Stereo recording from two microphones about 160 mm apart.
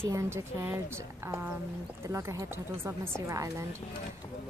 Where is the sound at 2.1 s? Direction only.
20° right (ahead or behind).